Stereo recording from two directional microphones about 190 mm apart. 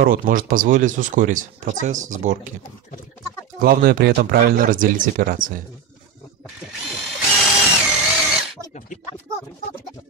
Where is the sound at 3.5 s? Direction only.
50° right (ahead or behind).